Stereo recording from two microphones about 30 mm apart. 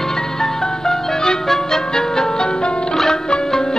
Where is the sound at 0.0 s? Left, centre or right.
Centre.